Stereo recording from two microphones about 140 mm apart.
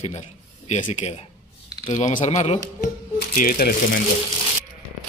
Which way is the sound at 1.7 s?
30° left (ahead or behind).